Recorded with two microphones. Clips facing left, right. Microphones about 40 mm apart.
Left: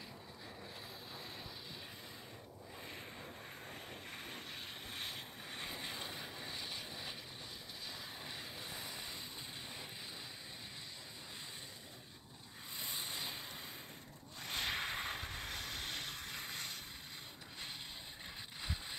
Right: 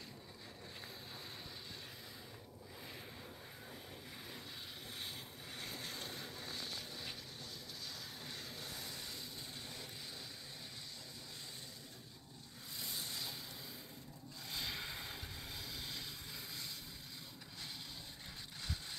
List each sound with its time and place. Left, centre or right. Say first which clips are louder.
4.9 s vehicle: left 3 dB; left
5.6 s vehicle: left 2 dB; left
8.3 s vehicle: even; left
12.8 s vehicle: left 2 dB; left
14.4 s vehicle: left 5 dB; left